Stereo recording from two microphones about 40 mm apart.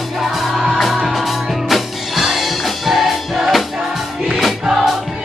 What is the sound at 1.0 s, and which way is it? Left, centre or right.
Music, centre.